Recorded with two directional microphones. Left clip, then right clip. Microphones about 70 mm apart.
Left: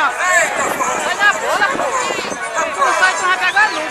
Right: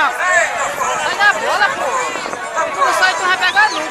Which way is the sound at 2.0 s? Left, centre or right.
Left.